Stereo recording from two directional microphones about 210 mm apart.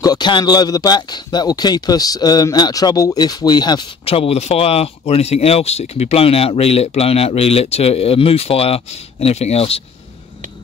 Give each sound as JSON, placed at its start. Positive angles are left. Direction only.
{"t": 0.0, "sound": "speech", "side_deg": 20}